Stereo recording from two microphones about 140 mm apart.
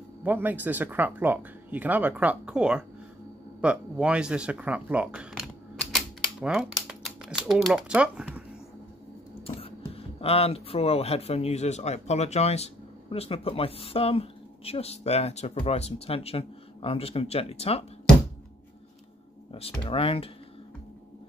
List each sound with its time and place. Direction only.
0.2 s speech: 15° right (ahead or behind)
10.2 s speech: 45° left (ahead or behind)
19.5 s speech: 40° left (ahead or behind)